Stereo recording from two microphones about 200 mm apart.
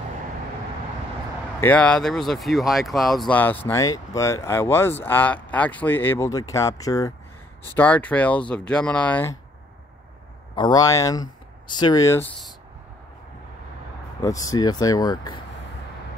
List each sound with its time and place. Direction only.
1.6 s speech: 5° left (ahead or behind)
10.5 s speech: 20° left (ahead or behind)
14.2 s speech: 15° left (ahead or behind)